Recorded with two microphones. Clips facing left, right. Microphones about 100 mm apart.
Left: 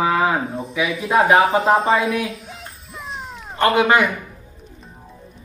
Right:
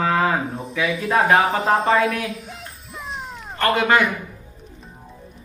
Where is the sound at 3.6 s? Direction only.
20° left (ahead or behind).